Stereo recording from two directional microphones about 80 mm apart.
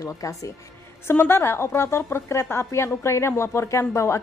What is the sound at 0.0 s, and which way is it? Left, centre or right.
Speech, left.